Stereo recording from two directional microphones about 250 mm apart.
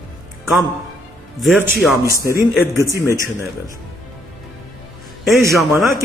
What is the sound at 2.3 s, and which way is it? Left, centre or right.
Speech, centre.